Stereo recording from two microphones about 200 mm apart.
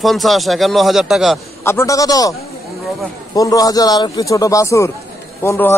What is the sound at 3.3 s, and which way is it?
Speech, 15° left (ahead or behind).